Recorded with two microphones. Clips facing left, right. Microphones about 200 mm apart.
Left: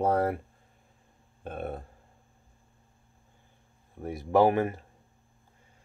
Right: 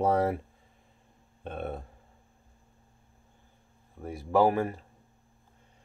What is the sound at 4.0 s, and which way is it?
Speech, 15° left (ahead or behind).